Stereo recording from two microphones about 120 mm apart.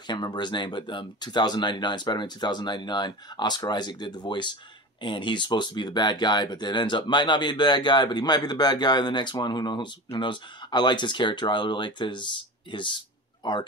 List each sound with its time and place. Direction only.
0.0 s speech: 40° left (ahead or behind)